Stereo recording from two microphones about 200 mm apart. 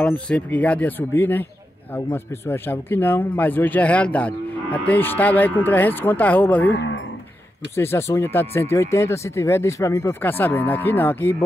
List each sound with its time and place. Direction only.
0.0 s speech: 5° left (ahead or behind)
6.7 s speech: 65° left (ahead or behind)
7.7 s speech: 10° left (ahead or behind)